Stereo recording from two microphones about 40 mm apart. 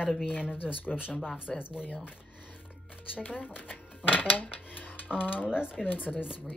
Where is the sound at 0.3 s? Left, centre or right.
Left.